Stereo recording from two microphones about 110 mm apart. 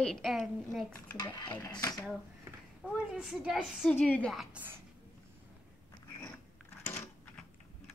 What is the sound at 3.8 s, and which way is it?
Speech, 15° left (ahead or behind).